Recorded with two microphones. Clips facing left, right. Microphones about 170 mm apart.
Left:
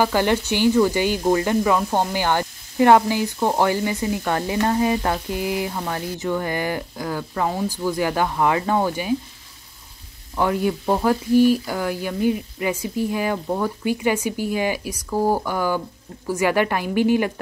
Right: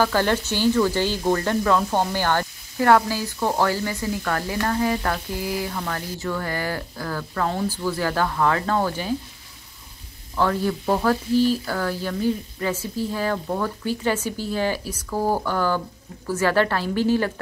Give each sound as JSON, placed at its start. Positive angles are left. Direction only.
{"t": 0.0, "sound": "speech", "side_deg": 15}
{"t": 10.3, "sound": "speech", "side_deg": 15}